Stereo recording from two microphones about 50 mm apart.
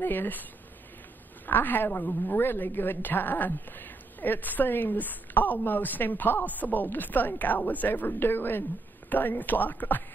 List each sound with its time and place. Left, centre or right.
0.0 s a woman's voice: left